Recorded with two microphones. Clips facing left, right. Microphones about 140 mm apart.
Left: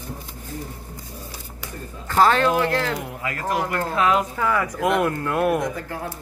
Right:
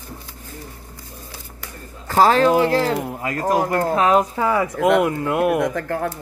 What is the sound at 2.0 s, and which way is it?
Speech, 35° right (ahead or behind).